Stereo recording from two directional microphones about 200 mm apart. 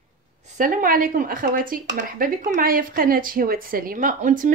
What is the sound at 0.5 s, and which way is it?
Speech, 40° right (ahead or behind).